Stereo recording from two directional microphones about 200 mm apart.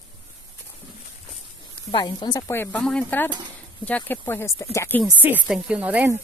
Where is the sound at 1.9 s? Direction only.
20° left (ahead or behind).